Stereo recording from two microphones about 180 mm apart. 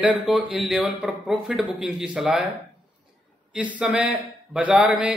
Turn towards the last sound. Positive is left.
turn(degrees=-5)  # may be behind; listen again after turning